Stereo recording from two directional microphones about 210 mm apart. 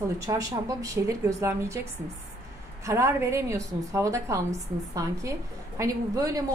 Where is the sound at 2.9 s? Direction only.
15° right (ahead or behind).